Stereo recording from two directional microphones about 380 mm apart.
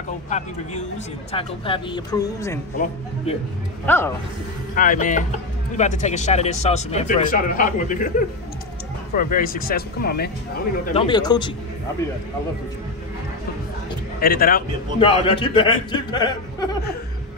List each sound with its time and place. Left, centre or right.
1.3 s speech: centre
3.8 s speech: centre
4.7 s speech: left
9.1 s speech: left
11.1 s speech: centre
14.2 s speech: left